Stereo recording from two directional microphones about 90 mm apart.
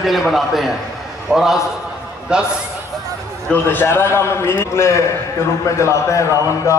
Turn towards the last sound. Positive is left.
turn(degrees=35)  # may be behind; listen again after turning